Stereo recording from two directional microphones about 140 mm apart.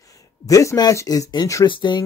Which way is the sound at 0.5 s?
25° left (ahead or behind).